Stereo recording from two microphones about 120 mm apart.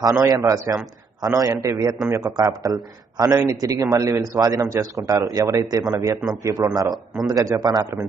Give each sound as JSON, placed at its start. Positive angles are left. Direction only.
{"t": 0.0, "sound": "a man's voice", "side_deg": -30}